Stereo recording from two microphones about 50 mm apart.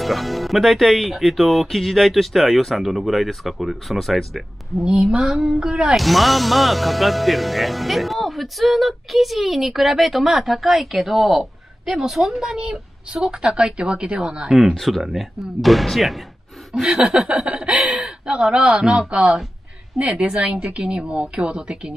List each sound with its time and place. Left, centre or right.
0.0 s speech: centre
4.8 s a woman's voice: centre
5.9 s a woman's voice: centre
14.6 s speech: centre
16.7 s a woman's voice: centre